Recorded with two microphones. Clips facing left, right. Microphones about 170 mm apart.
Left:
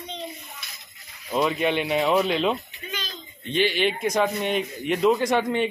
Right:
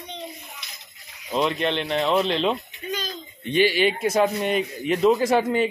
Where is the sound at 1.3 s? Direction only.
5° left (ahead or behind).